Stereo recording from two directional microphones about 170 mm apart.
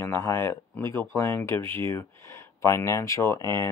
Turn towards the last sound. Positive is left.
turn(degrees=15)  # may be behind; listen again after turning